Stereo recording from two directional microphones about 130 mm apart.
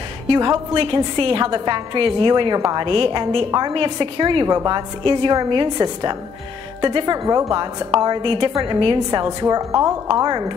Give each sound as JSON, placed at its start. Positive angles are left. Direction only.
{"t": 0.3, "sound": "a woman's voice", "side_deg": -40}
{"t": 4.5, "sound": "a woman's voice", "side_deg": -25}
{"t": 7.2, "sound": "a woman's voice", "side_deg": -25}
{"t": 9.2, "sound": "a woman's voice", "side_deg": -30}